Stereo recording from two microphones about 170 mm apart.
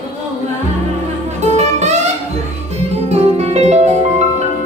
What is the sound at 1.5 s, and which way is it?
Music, 40° right (ahead or behind).